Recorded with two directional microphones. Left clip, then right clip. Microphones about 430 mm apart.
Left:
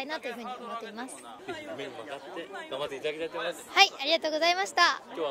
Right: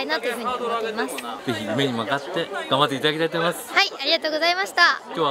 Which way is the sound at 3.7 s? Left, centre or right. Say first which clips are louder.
Right 1 dB; centre.